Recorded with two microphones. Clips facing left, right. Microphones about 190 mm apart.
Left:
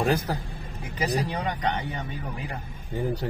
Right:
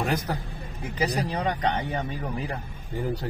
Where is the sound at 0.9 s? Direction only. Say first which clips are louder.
Even; 35° right (ahead or behind).